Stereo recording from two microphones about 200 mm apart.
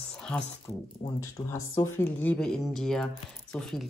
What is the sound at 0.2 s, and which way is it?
Speech, 5° left (ahead or behind).